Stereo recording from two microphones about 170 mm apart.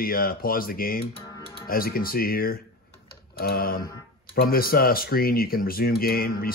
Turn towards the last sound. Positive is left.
turn(degrees=60)  # may be behind; listen again after turning